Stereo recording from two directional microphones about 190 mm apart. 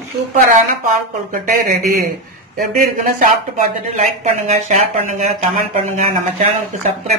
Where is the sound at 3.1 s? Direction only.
45° right (ahead or behind).